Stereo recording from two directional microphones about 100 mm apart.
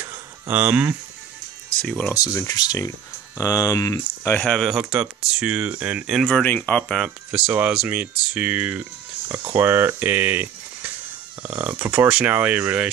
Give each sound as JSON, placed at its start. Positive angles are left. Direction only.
{"t": 0.5, "sound": "speech", "side_deg": -15}
{"t": 1.8, "sound": "speech", "side_deg": 5}
{"t": 2.1, "sound": "speech", "side_deg": 35}
{"t": 4.4, "sound": "speech", "side_deg": 5}
{"t": 6.4, "sound": "speech", "side_deg": 20}
{"t": 7.2, "sound": "speech", "side_deg": -15}